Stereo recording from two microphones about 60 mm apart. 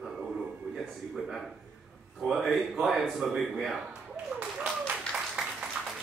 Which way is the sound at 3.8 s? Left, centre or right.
Centre.